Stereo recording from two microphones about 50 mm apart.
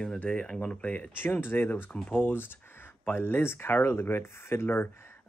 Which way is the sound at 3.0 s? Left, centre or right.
Left.